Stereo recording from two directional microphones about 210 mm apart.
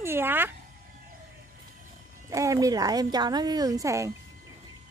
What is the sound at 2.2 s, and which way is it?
A woman's voice, 15° right (ahead or behind).